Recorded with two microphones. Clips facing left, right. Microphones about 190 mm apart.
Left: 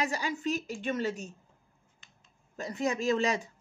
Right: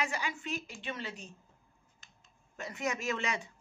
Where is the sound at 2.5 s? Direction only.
35° left (ahead or behind).